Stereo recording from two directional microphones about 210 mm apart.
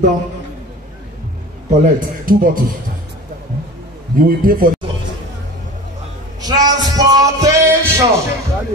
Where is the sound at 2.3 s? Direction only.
45° right (ahead or behind).